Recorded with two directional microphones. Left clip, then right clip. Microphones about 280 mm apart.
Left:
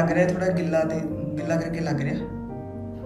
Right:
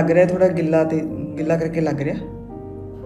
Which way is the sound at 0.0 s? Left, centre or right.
Centre.